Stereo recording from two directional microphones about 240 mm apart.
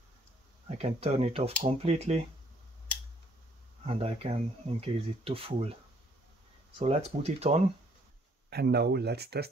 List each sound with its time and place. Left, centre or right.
0.7 s speech: right
3.8 s speech: right
6.8 s speech: right
8.5 s speech: right